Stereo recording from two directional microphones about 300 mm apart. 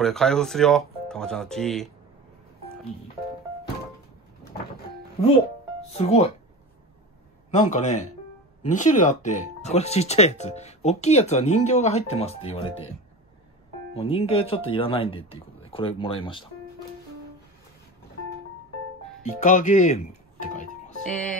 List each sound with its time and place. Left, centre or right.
0.0 s speech: centre
5.9 s speech: left
7.5 s speech: left
13.9 s speech: centre
19.4 s speech: left